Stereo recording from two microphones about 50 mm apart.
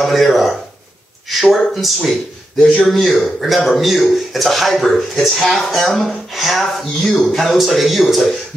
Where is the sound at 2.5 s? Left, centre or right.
Centre.